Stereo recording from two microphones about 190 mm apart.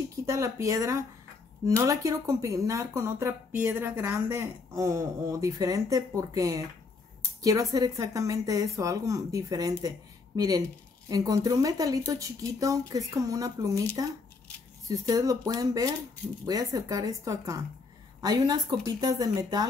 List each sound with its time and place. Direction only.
0.3 s speech: 15° right (ahead or behind)
7.7 s speech: 20° right (ahead or behind)
14.9 s speech: 20° right (ahead or behind)